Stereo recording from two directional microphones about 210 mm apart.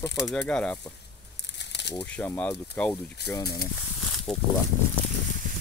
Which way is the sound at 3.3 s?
20° left (ahead or behind).